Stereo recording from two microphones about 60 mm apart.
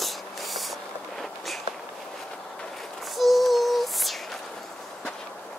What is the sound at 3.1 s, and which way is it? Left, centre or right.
Child singing, centre.